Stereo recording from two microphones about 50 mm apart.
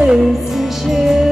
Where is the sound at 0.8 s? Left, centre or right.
Centre.